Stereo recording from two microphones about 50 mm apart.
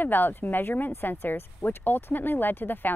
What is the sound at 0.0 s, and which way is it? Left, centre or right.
A woman's voice, left.